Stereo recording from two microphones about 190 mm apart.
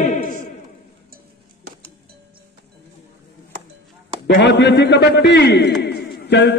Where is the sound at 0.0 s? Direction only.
40° left (ahead or behind).